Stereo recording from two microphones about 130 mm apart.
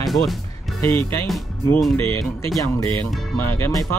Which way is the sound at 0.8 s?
20° left (ahead or behind).